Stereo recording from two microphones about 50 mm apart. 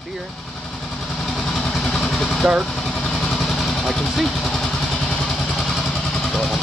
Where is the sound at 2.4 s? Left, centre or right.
Centre.